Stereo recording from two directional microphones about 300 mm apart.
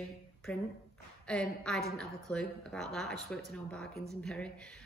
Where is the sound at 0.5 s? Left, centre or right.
Centre.